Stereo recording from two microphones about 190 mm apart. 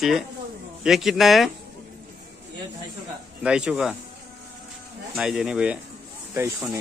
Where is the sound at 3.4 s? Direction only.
5° right (ahead or behind).